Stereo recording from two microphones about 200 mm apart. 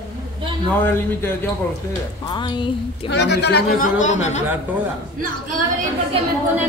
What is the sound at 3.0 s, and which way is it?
Speech, 60° left (ahead or behind).